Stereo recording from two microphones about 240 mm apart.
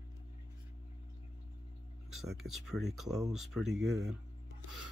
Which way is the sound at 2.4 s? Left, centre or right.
Centre.